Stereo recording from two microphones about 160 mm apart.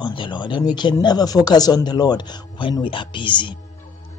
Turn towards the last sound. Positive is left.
turn(degrees=30)  # may be behind; listen again after turning